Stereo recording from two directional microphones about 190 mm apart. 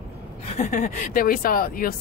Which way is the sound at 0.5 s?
40° left (ahead or behind).